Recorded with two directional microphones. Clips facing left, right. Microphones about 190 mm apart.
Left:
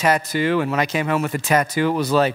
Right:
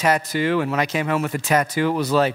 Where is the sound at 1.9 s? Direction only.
30° left (ahead or behind).